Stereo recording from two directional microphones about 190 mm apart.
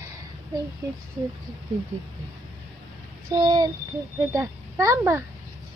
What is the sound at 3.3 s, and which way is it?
A child's voice, 20° right (ahead or behind).